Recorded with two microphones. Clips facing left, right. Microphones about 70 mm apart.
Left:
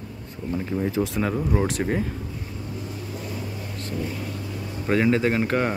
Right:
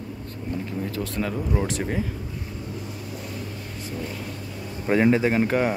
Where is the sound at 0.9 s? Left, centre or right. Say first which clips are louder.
Left 1 dB; centre.